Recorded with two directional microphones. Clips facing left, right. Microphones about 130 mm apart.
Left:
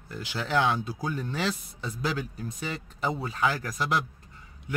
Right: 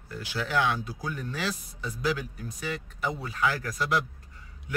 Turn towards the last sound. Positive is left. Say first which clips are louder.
# even
turn(degrees=20)  # may be behind; listen again after turning